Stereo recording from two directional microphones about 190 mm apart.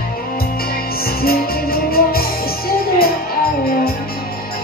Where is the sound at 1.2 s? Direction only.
55° left (ahead or behind).